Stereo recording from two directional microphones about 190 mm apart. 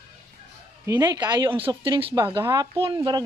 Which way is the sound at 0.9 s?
20° right (ahead or behind).